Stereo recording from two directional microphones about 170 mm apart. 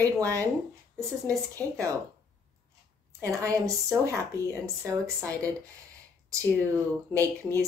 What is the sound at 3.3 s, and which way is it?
A woman's voice, 20° right (ahead or behind).